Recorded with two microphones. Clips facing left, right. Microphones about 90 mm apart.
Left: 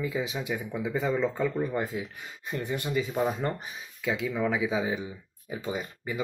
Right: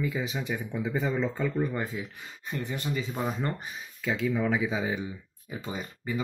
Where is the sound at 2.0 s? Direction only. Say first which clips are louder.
Left 1 dB; 15° left (ahead or behind).